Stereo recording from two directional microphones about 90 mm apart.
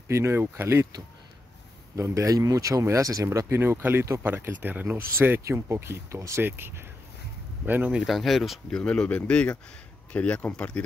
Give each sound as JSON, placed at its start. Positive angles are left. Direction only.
{"t": 0.1, "sound": "speech", "side_deg": -30}
{"t": 2.0, "sound": "speech", "side_deg": -35}
{"t": 7.9, "sound": "speech", "side_deg": -5}
{"t": 8.7, "sound": "speech", "side_deg": 10}